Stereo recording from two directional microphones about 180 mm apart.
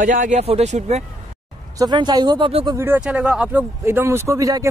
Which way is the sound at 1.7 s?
25° right (ahead or behind).